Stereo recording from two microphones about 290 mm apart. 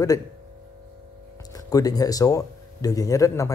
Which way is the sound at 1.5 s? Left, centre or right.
Centre.